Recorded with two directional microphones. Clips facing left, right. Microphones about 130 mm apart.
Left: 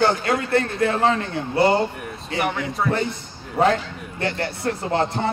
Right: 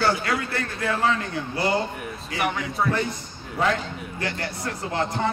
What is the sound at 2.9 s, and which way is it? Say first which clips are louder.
Speech: left 4 dB; 25° left (ahead or behind).